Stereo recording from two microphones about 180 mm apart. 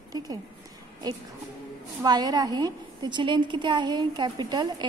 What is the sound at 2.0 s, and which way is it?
A woman's voice, 20° right (ahead or behind).